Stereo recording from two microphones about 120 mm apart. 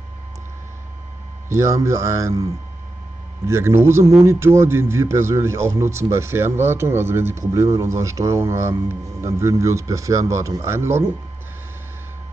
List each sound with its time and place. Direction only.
1.5 s speech: 25° right (ahead or behind)
3.4 s speech: 20° right (ahead or behind)